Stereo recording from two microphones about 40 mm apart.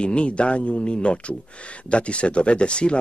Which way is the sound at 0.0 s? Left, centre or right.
Left.